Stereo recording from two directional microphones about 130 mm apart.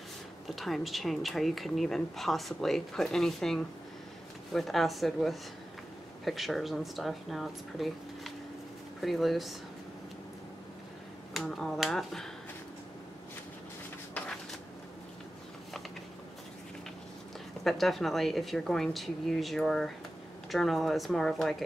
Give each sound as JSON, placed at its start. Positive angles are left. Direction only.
{"t": 0.6, "sound": "speech", "side_deg": 0}
{"t": 11.3, "sound": "speech", "side_deg": 5}
{"t": 14.1, "sound": "a sound", "side_deg": 10}
{"t": 17.6, "sound": "speech", "side_deg": 0}